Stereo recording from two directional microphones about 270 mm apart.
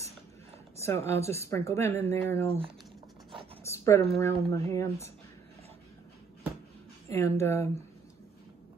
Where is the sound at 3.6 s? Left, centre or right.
Centre.